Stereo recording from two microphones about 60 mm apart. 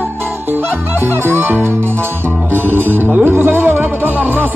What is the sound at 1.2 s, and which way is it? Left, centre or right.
Music, right.